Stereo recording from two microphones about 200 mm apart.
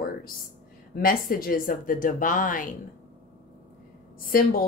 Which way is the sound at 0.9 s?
45° left (ahead or behind).